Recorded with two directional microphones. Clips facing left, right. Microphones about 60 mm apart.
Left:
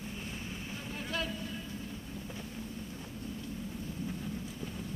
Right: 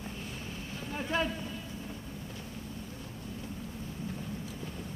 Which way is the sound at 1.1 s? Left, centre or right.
Right.